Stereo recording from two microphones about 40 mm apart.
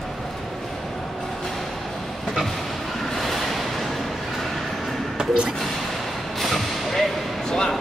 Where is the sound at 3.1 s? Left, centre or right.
Centre.